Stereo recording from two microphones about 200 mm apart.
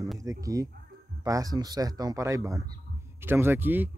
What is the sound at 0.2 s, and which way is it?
Speech, 15° right (ahead or behind).